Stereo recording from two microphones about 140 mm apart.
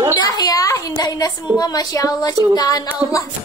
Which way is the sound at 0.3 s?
25° left (ahead or behind).